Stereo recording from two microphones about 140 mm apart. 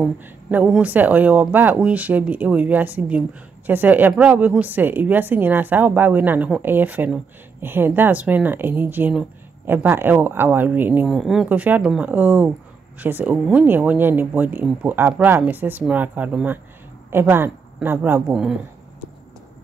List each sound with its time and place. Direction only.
0.2 s speech: 10° right (ahead or behind)
11.1 s speech: centre (ahead or behind)